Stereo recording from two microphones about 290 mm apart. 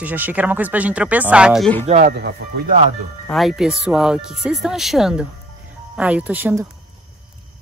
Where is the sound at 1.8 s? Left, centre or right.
Right.